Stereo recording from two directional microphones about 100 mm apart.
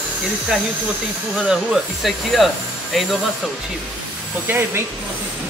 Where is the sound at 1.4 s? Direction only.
5° right (ahead or behind).